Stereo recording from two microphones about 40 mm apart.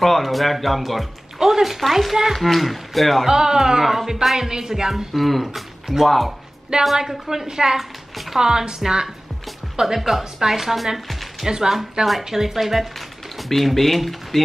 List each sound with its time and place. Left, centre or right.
0.0 s speech: centre
3.3 s speech: centre
6.0 s speech: centre
7.0 s speech: centre
9.8 s speech: centre
11.4 s speech: centre
13.5 s speech: centre